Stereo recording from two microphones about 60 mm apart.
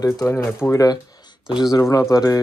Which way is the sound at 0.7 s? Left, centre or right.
Left.